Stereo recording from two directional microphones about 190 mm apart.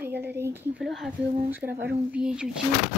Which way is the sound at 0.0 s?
10° right (ahead or behind).